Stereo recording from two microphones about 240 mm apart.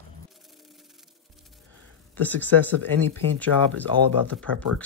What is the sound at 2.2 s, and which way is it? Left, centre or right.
Speech, centre.